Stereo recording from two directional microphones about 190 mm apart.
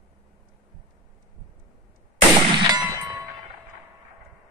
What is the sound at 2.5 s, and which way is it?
Clang, 25° right (ahead or behind).